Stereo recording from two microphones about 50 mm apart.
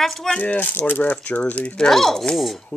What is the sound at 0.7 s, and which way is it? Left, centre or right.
Speech, left.